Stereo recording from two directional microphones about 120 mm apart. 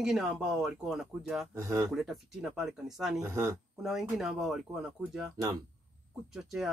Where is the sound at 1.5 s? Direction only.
25° right (ahead or behind).